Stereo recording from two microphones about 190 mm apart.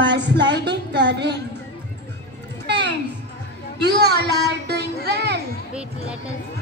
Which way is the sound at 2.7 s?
65° right (ahead or behind).